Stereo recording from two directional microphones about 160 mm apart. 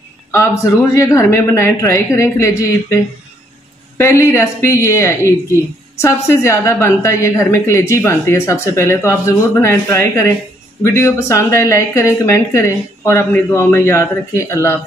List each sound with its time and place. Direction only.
0.3 s a woman's voice: 20° left (ahead or behind)
4.0 s a woman's voice: 15° left (ahead or behind)